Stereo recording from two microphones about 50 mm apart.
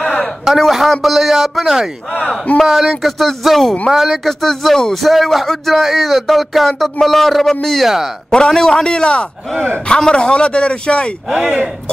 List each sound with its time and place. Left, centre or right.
0.0 s a sound: centre
0.6 s speech: centre
2.1 s a man's voice: left
2.6 s speech: centre
3.9 s speech: centre
5.0 s a man's voice: centre; by 11.1 s left
11.2 s speech: centre